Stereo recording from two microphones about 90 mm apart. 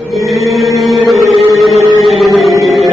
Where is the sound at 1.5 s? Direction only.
Centre (ahead or behind).